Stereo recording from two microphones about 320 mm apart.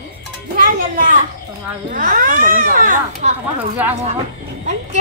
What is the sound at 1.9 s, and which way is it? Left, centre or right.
A child's voice, right.